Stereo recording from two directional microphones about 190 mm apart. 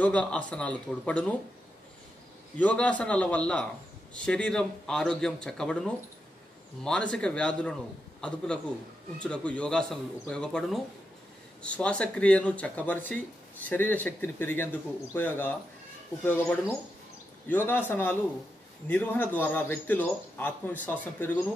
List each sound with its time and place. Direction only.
0.0 s a man's voice: 5° left (ahead or behind)
2.5 s a man's voice: 5° left (ahead or behind)